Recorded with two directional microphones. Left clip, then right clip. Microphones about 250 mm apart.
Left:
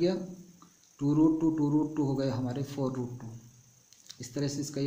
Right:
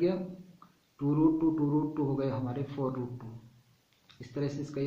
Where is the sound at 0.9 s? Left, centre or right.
Left.